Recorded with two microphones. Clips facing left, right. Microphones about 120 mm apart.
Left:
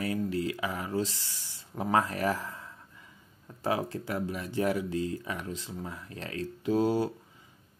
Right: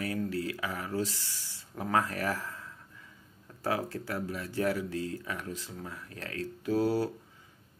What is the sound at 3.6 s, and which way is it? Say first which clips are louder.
Speech: left 2 dB; 20° left (ahead or behind).